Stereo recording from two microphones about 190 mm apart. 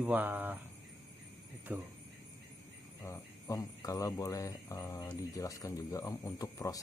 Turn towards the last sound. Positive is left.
turn(degrees=20)  # may be behind; listen again after turning